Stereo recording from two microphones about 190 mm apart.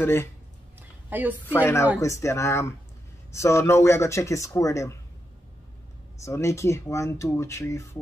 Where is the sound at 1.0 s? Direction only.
10° right (ahead or behind).